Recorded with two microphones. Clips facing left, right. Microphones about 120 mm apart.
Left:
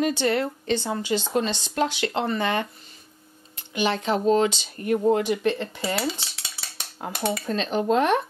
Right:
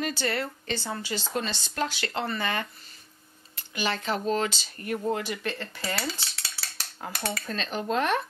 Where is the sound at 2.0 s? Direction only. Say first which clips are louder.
Left 5 dB; 10° left (ahead or behind).